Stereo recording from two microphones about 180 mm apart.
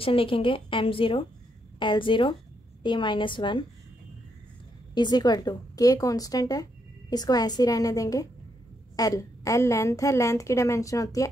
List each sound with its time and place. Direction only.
0.0 s a woman's voice: 30° left (ahead or behind)
4.9 s a woman's voice: 25° left (ahead or behind)